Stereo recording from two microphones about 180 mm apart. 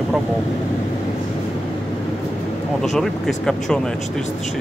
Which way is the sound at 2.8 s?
Centre (ahead or behind).